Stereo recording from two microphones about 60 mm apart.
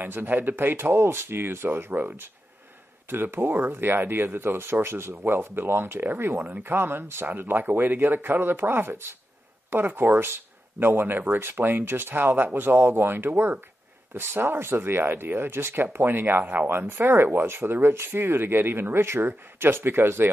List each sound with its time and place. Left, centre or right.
0.0 s speech: right